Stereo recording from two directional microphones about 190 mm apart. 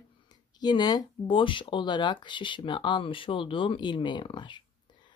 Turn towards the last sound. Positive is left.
turn(degrees=25)  # may be behind; listen again after turning